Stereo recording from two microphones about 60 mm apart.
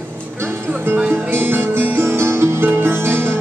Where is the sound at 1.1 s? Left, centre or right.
Right.